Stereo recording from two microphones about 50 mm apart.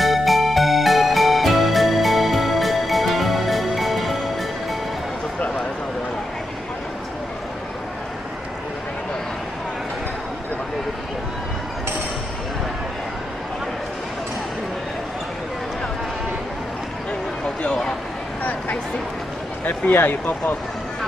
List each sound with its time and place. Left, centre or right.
0.0 s music: centre
18.4 s a sound: left
19.6 s speech: left